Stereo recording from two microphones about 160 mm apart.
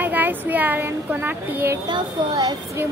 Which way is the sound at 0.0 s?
10° right (ahead or behind).